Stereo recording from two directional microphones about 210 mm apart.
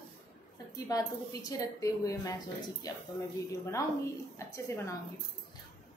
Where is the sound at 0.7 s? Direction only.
15° left (ahead or behind).